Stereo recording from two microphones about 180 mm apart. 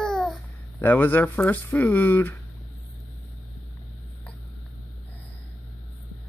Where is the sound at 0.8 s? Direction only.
10° left (ahead or behind).